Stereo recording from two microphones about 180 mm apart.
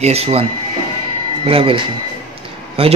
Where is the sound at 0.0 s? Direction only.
35° right (ahead or behind).